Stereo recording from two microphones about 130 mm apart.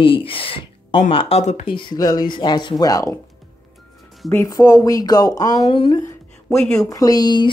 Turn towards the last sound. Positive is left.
turn(degrees=35)  # may be behind; listen again after turning